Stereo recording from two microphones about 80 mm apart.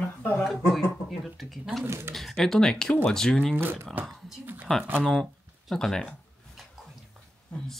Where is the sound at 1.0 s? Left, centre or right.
Centre.